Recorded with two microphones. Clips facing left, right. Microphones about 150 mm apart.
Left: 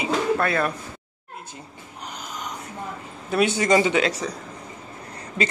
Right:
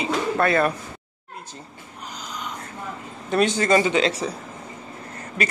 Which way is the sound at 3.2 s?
5° left (ahead or behind).